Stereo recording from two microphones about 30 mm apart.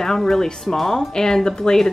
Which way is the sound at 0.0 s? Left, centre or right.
Centre.